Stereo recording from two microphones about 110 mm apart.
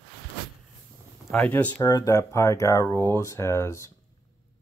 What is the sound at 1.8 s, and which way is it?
Speech, 35° left (ahead or behind).